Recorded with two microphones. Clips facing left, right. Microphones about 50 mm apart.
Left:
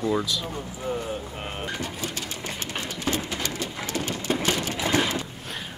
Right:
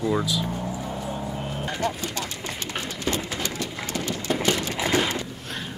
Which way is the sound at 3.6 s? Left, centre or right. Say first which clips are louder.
Even; left.